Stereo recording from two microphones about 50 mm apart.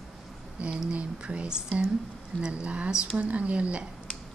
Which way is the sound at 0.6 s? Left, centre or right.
Right.